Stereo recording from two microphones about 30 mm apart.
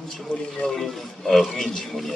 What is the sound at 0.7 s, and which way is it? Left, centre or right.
A man's voice, centre.